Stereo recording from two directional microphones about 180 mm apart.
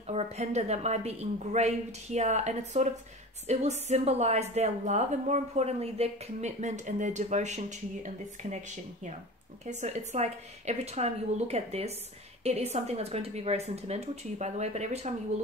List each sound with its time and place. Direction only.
0.0 s a woman's voice: 35° right (ahead or behind)
9.7 s a woman's voice: 40° right (ahead or behind)